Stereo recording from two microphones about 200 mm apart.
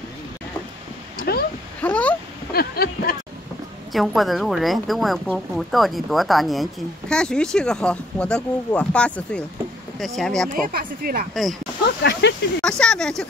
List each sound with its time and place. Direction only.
1.8 s a sound: 5° left (ahead or behind)
2.5 s a sound: 50° left (ahead or behind)
3.9 s a woman's voice: centre (ahead or behind)
10.5 s speech: 45° right (ahead or behind)
11.8 s speech: 60° left (ahead or behind)
12.6 s a woman's voice: 5° left (ahead or behind)